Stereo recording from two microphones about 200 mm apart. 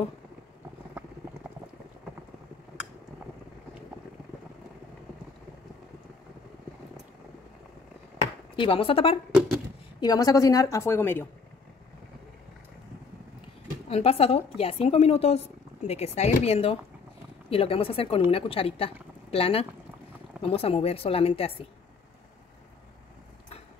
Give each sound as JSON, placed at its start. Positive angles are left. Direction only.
{"t": 8.5, "sound": "a woman's voice", "side_deg": 25}
{"t": 13.8, "sound": "a woman's voice", "side_deg": 30}